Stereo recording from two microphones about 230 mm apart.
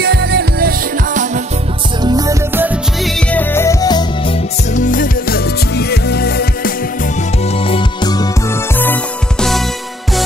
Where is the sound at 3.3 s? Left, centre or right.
Centre.